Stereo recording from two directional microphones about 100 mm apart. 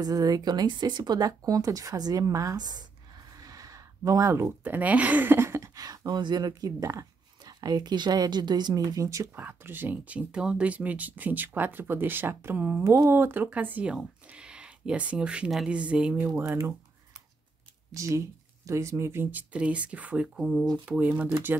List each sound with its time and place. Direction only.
0.0 s speech: 40° right (ahead or behind)
3.3 s a sound: 35° right (ahead or behind)
4.5 s speech: 15° right (ahead or behind)
5.8 s speech: 40° right (ahead or behind)
9.3 s speech: 20° right (ahead or behind)
12.8 s speech: 30° right (ahead or behind); by 16.5 s 15° right (ahead or behind)
17.9 s speech: 30° right (ahead or behind)
19.5 s speech: 10° right (ahead or behind)